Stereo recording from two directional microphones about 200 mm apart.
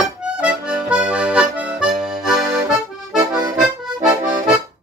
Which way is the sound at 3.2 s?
20° right (ahead or behind).